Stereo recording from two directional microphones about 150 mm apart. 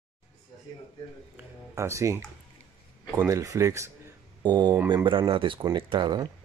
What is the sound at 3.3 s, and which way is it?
Speech, 20° right (ahead or behind).